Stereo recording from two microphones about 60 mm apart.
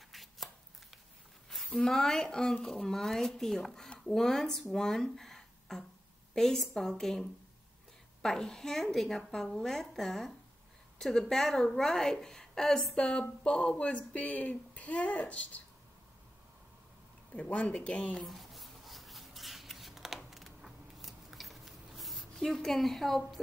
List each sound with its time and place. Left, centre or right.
0.1 s chopping: centre
1.7 s a woman's voice: centre
17.3 s speech: left
18.1 s scissors: centre